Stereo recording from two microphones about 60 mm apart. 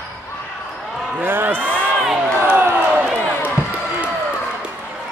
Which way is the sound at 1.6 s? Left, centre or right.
Left.